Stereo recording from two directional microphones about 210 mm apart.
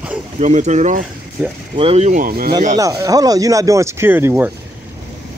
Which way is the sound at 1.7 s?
25° right (ahead or behind).